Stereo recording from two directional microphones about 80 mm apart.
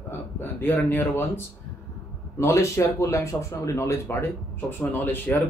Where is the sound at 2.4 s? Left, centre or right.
Left.